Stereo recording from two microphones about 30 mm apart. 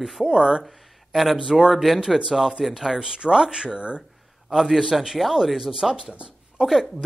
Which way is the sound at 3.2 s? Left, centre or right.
Right.